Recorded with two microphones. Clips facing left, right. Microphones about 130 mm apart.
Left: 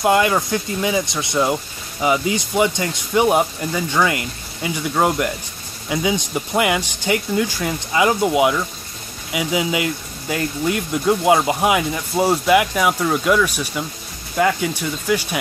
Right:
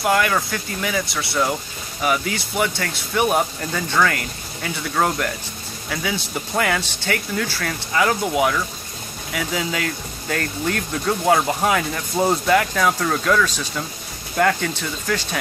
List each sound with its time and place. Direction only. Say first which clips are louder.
0.0 s speech: left 3 dB; 20° left (ahead or behind)